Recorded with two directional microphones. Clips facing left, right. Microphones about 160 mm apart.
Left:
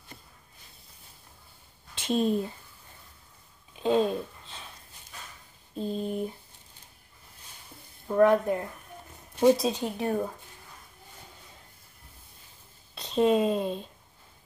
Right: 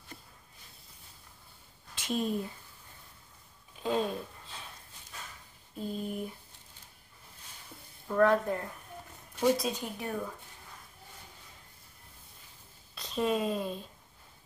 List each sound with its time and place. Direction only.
2.0 s speech: 25° left (ahead or behind)
3.7 s a sound: 20° left (ahead or behind)
5.8 s speech: 25° left (ahead or behind)
8.1 s speech: 15° left (ahead or behind)
9.4 s speech: 25° left (ahead or behind)
12.9 s speech: 25° left (ahead or behind)